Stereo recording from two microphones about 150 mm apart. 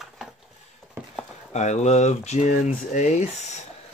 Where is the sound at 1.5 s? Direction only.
50° left (ahead or behind).